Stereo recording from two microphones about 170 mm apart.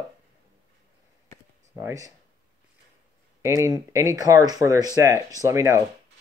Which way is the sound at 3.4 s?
20° right (ahead or behind).